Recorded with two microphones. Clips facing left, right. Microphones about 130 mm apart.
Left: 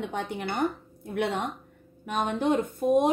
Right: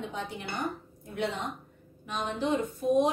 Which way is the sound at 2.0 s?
55° left (ahead or behind).